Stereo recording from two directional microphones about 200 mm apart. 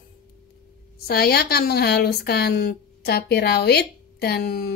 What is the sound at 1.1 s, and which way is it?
Speech, 50° left (ahead or behind).